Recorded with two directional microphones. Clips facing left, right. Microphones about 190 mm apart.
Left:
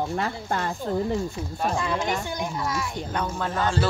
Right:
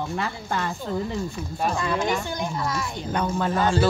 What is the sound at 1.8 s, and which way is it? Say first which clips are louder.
Speech: right 2 dB; 15° left (ahead or behind).